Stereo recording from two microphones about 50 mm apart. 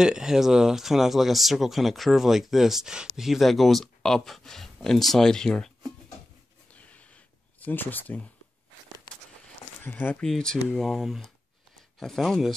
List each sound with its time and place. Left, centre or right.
0.0 s speech: centre
6.7 s snort: left
7.6 s speech: left
9.8 s speech: left
10.2 s speech: centre
10.7 s speech: centre